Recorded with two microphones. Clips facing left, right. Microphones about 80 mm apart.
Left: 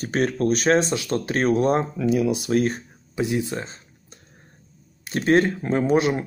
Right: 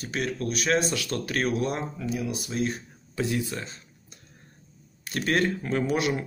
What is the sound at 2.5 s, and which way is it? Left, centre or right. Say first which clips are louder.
Speech: left 6 dB; left.